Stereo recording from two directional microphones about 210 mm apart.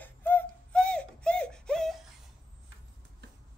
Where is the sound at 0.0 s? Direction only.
10° left (ahead or behind).